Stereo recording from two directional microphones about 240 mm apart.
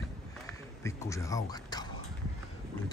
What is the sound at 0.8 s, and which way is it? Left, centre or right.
Speech, centre.